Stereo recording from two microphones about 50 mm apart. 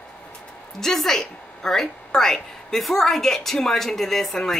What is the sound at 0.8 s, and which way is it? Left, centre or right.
A woman's voice, centre.